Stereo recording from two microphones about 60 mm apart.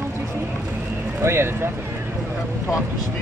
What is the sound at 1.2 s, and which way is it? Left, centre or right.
Speech, right.